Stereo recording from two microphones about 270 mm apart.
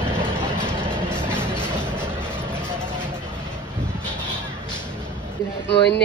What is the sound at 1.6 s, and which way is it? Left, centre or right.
Music, centre.